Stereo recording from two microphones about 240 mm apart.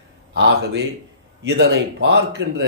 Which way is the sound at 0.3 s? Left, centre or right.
Right.